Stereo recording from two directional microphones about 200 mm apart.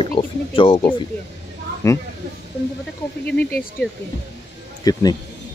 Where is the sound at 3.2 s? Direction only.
5° left (ahead or behind).